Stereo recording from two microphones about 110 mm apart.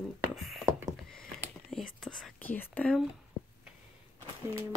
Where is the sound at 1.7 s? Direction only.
5° left (ahead or behind).